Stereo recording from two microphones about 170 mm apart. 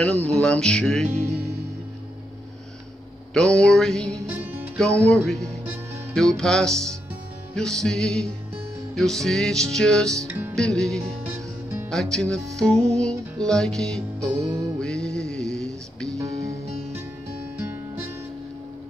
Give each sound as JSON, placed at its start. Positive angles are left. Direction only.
{"t": 0.0, "sound": "music", "side_deg": 5}
{"t": 3.3, "sound": "music", "side_deg": 5}
{"t": 11.3, "sound": "music", "side_deg": -15}
{"t": 11.9, "sound": "music", "side_deg": 0}
{"t": 16.2, "sound": "music", "side_deg": -20}
{"t": 17.6, "sound": "music", "side_deg": -15}